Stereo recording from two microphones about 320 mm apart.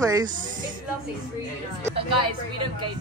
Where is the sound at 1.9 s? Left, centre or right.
Centre.